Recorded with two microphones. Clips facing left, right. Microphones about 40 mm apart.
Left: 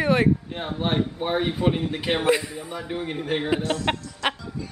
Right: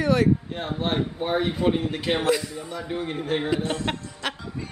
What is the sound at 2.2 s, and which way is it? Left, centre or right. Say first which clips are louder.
Speech: left 2 dB; left.